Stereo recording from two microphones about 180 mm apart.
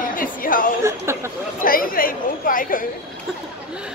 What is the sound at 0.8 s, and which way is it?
Speech, 15° right (ahead or behind).